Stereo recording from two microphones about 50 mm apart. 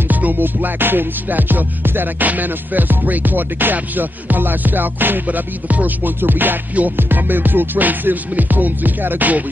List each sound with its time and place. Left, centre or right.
0.1 s music: right